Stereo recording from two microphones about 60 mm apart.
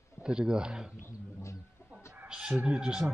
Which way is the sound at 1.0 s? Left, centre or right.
Left.